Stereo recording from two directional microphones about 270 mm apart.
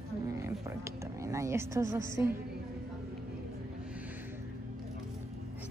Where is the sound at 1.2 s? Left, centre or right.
Centre.